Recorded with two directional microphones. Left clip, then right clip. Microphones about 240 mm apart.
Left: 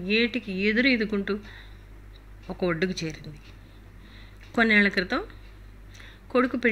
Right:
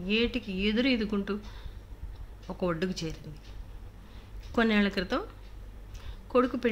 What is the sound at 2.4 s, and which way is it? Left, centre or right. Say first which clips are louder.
Speech: left 4 dB; centre.